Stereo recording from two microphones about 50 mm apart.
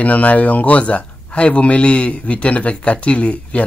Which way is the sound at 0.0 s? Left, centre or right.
Left.